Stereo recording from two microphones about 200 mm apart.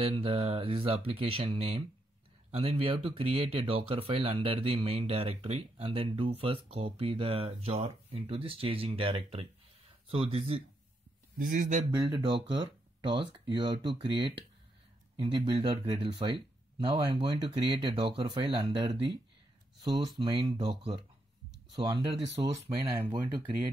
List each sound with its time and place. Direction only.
0.0 s speech: 25° right (ahead or behind)
11.3 s speech: 40° right (ahead or behind)
11.9 s speech: 20° right (ahead or behind)
20.2 s speech: 20° right (ahead or behind)
21.7 s speech: 25° right (ahead or behind)